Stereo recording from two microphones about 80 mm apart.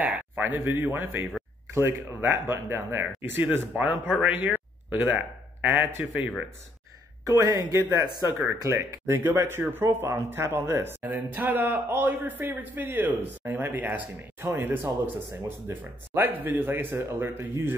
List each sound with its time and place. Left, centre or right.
0.0 s a man's voice: right
7.2 s speech: right
8.5 s speech: right